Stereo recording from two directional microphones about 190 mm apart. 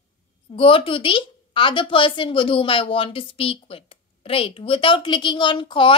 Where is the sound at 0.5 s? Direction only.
30° left (ahead or behind).